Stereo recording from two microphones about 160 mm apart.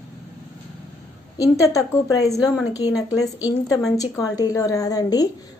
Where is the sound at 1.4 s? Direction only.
20° left (ahead or behind).